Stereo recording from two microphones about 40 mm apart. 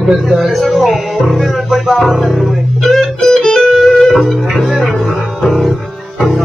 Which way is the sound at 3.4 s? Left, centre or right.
Centre.